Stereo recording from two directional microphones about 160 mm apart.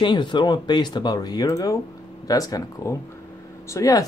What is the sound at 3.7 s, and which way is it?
Speech, 20° left (ahead or behind).